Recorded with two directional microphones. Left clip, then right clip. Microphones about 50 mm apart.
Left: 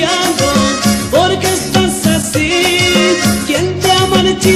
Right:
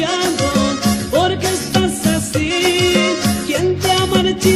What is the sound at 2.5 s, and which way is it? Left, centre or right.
Music, right.